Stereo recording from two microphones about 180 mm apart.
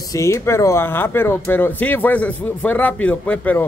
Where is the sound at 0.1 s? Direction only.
15° left (ahead or behind).